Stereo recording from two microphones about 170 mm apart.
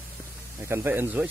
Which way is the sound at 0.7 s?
10° right (ahead or behind).